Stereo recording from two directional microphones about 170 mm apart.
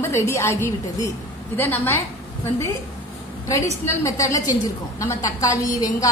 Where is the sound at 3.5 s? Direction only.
20° left (ahead or behind).